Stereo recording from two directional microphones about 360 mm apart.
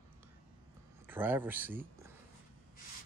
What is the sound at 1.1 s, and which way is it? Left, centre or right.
Speech, centre.